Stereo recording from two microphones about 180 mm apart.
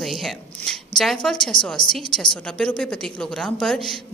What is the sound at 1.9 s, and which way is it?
A woman's voice, 5° left (ahead or behind).